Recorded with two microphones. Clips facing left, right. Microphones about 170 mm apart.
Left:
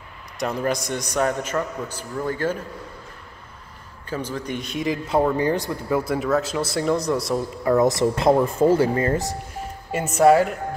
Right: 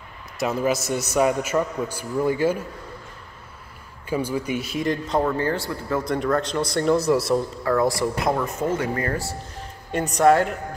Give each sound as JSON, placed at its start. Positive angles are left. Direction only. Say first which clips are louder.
{"t": 0.4, "sound": "a man's voice", "louder": "right 1 dB", "side_deg": -5}
{"t": 4.1, "sound": "speech", "louder": "right 3 dB", "side_deg": -10}
{"t": 7.6, "sound": "speech", "louder": "left 7 dB", "side_deg": 20}
{"t": 9.8, "sound": "speech", "louder": "left 1 dB", "side_deg": 5}